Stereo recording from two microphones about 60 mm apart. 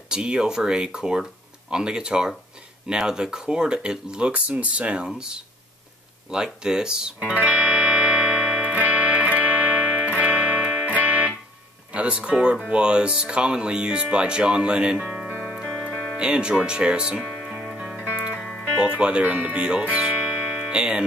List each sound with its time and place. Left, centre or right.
0.1 s speech: centre
5.0 s speech: centre
6.3 s music: centre
8.7 s music: right
11.9 s speech: right
15.5 s music: centre
17.2 s music: centre
17.7 s music: centre
18.8 s speech: centre